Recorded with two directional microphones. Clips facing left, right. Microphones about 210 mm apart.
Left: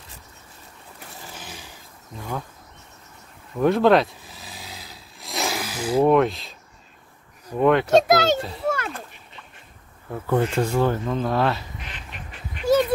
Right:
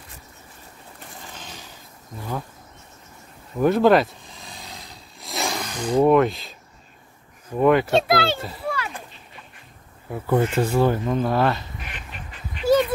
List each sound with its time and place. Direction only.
1.3 s a sound: 10° left (ahead or behind)
3.5 s vehicle: centre (ahead or behind)
7.5 s speech: centre (ahead or behind)
7.9 s a child's voice: 45° left (ahead or behind)
8.4 s speech: centre (ahead or behind)
8.6 s a sound: 50° left (ahead or behind)
10.0 s speech: 5° right (ahead or behind)